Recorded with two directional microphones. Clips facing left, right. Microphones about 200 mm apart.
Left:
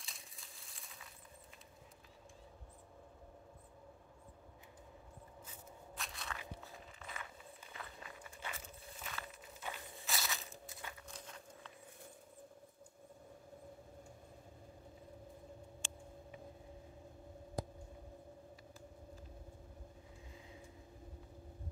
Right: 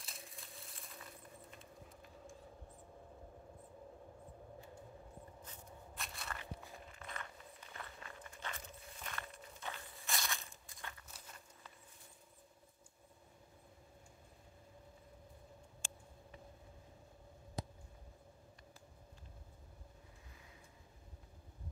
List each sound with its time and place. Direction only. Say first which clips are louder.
0.0 s coin: right 4 dB; centre (ahead or behind)
5.5 s crackle: even; centre (ahead or behind)
7.0 s walk: right 1 dB; 5° left (ahead or behind)
11.1 s a sound: left 6 dB; 5° right (ahead or behind)